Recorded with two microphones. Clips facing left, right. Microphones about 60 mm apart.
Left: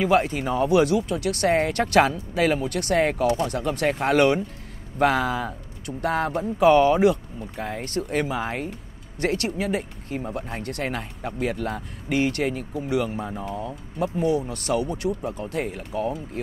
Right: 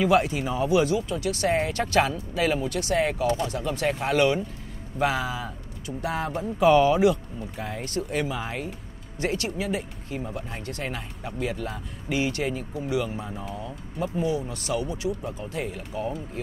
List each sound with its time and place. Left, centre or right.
0.0 s speech: left